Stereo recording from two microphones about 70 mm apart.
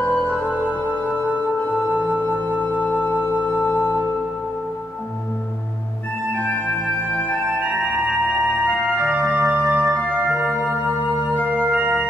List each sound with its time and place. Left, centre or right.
0.1 s music: centre
1.9 s music: right
2.6 s music: left
6.5 s music: left
7.5 s organ: right
8.9 s organ: right